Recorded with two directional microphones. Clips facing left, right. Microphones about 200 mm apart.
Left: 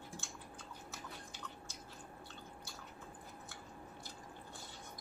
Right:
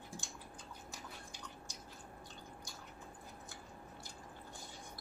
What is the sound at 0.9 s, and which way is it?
Chewing, 15° right (ahead or behind).